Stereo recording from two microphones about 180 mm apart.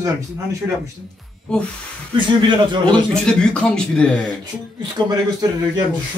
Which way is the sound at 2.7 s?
25° right (ahead or behind).